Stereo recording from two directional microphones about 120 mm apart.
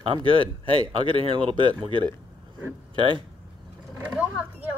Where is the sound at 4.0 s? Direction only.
10° right (ahead or behind).